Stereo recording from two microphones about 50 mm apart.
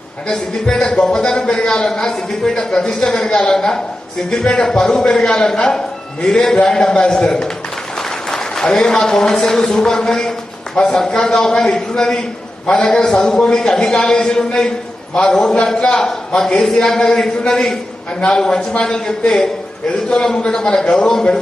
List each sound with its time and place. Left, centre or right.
0.3 s a man's voice: centre